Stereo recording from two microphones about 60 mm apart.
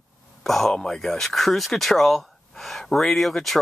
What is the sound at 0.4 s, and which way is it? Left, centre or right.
Speech, centre.